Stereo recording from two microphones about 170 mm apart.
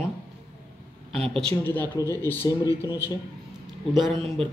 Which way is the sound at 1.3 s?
10° left (ahead or behind).